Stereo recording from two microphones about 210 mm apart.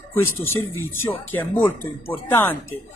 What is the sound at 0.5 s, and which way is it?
Speech, 75° left (ahead or behind).